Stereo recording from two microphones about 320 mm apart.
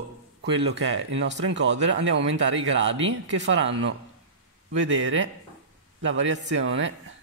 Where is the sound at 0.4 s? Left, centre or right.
Right.